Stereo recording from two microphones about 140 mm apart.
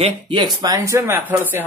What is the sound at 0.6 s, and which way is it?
Speech, 20° right (ahead or behind).